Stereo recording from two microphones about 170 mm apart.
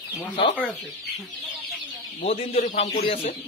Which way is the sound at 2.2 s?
35° left (ahead or behind).